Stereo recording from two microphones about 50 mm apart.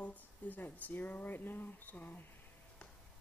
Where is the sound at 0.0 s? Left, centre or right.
Left.